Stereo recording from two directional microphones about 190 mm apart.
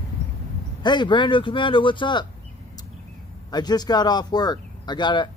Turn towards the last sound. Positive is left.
turn(degrees=25)  # may be behind; listen again after turning